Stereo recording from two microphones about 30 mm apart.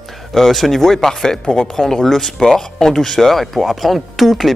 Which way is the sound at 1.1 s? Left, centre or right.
Left.